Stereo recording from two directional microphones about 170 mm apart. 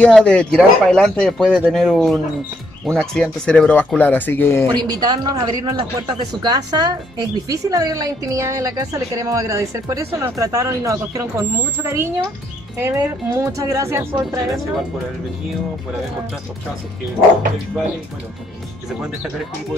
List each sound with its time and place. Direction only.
0.0 s speech: 5° left (ahead or behind)
4.6 s speech: 25° right (ahead or behind)